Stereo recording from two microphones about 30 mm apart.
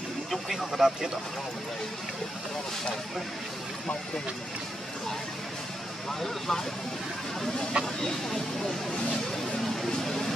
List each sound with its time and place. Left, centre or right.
0.6 s speech: centre
6.2 s speech: centre
7.8 s speech: right
9.8 s a sound: centre